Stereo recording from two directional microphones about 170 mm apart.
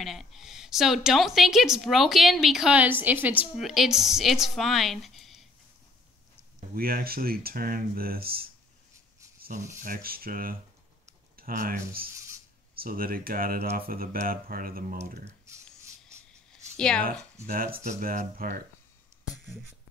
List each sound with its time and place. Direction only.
0.0 s a woman's voice: centre (ahead or behind)
6.7 s speech: 60° right (ahead or behind)
9.4 s a sound: 50° right (ahead or behind)
9.8 s speech: 55° right (ahead or behind)
15.5 s a sound: 15° right (ahead or behind)
16.7 s speech: 5° left (ahead or behind)
17.8 s speech: 55° right (ahead or behind)